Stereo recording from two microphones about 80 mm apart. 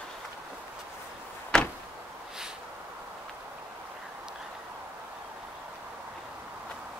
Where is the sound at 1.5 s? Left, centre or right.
Centre.